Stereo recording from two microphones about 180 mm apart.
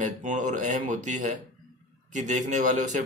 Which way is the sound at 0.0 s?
45° right (ahead or behind).